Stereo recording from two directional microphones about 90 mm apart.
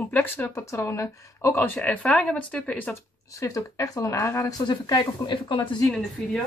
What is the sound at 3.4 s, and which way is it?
Speech, 35° left (ahead or behind).